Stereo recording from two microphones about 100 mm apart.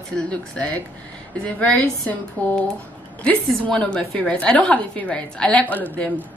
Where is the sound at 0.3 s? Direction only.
10° left (ahead or behind).